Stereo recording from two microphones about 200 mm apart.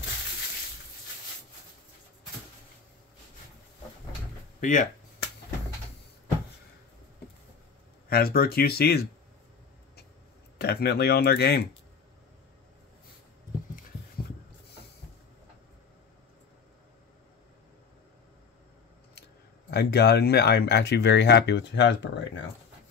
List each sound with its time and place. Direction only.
4.6 s speech: 40° left (ahead or behind)
8.1 s speech: 50° left (ahead or behind)
10.6 s speech: 50° left (ahead or behind)
19.7 s speech: 55° left (ahead or behind)